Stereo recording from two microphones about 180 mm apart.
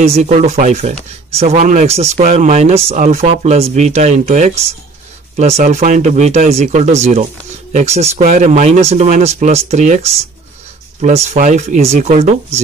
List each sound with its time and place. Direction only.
0.0 s speech: 40° right (ahead or behind)